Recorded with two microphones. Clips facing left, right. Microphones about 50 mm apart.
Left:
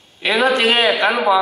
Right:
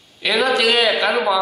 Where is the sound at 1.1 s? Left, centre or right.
Left.